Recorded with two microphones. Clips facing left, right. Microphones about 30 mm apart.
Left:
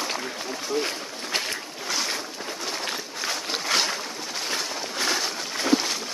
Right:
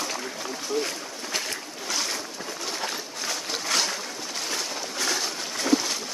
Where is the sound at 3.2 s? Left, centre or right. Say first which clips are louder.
Left 2 dB; centre.